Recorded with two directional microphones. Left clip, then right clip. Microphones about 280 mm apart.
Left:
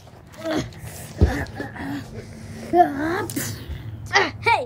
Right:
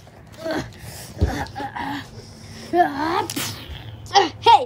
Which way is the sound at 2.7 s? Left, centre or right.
Left.